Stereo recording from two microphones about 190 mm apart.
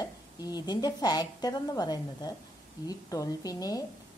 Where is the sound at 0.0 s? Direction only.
20° left (ahead or behind).